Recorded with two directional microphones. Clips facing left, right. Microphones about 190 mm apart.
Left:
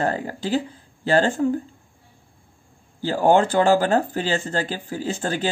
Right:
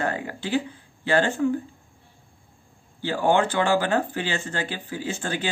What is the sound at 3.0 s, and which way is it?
A man's voice, 40° left (ahead or behind).